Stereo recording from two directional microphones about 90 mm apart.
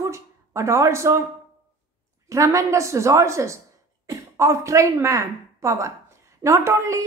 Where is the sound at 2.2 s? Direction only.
35° right (ahead or behind).